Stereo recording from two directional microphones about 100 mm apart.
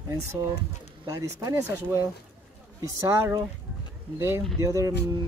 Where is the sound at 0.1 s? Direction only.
30° right (ahead or behind).